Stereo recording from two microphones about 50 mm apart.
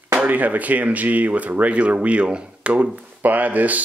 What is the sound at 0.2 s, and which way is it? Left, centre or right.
Speech, right.